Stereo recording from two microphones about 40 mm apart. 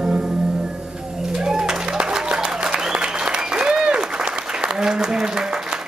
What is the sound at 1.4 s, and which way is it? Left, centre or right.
Applause, centre.